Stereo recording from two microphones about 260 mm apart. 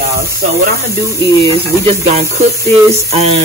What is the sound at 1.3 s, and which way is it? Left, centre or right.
Speech, right.